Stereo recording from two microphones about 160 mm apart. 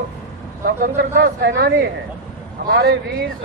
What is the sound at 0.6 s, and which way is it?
A man's voice, 70° right (ahead or behind).